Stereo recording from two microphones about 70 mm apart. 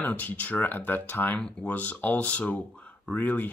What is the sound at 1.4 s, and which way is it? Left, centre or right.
Speech, centre.